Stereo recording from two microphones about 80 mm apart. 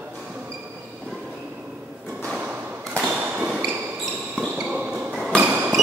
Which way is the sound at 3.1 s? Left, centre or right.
Centre.